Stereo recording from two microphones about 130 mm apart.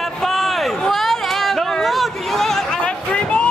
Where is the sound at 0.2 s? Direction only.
Centre (ahead or behind).